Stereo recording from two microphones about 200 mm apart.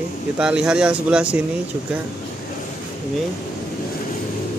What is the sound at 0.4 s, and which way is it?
Speech, 5° right (ahead or behind).